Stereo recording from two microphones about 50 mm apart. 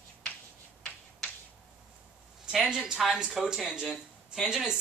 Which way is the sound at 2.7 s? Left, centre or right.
Centre.